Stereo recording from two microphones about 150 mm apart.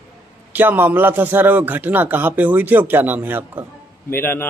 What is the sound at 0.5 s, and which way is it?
A man's voice, 15° right (ahead or behind).